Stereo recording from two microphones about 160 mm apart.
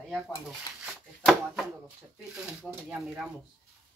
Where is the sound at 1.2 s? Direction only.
Centre (ahead or behind).